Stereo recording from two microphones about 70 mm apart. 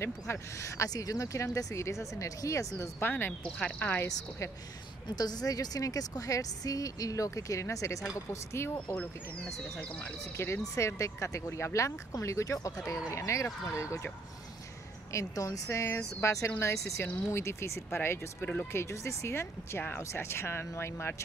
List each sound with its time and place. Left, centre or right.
0.0 s speech: left
0.8 s speech: left
3.0 s speech: left
3.4 s speech: centre
3.8 s speech: left
5.0 s a woman's voice: left
8.9 s speech: centre
10.3 s speech: left
15.1 s speech: left